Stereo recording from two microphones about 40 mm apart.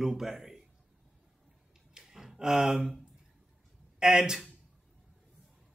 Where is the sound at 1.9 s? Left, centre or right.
Centre.